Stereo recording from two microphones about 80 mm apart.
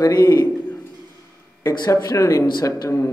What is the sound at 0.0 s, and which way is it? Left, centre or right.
Speech, left.